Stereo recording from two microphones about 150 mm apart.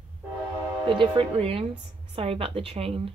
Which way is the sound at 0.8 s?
35° right (ahead or behind).